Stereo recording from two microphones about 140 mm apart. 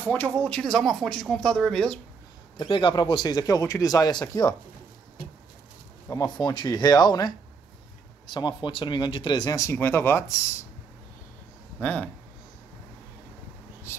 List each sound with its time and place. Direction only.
0.0 s a woman's voice: 10° left (ahead or behind)
2.5 s speech: 35° left (ahead or behind)
6.0 s speech: 25° left (ahead or behind)
11.8 s speech: 10° left (ahead or behind)